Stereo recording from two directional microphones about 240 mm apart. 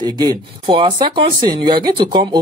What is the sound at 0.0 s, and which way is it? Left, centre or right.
Speech, centre.